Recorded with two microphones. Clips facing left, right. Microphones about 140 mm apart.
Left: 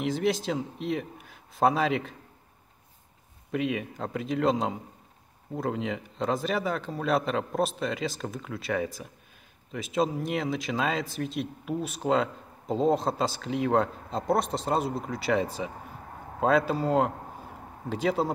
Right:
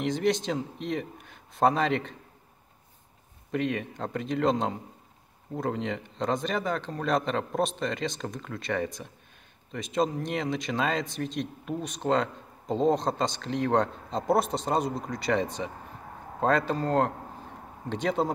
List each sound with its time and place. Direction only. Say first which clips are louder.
0.0 s speech: right 1 dB; 5° left (ahead or behind)
3.5 s speech: even; 5° left (ahead or behind)